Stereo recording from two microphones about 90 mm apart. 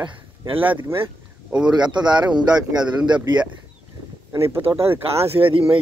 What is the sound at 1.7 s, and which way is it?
Speech, 55° right (ahead or behind).